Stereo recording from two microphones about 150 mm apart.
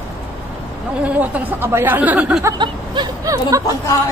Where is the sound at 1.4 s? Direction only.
15° right (ahead or behind).